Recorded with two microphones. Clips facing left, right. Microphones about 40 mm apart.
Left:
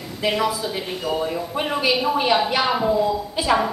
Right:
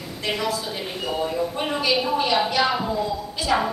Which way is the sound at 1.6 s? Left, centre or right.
Centre.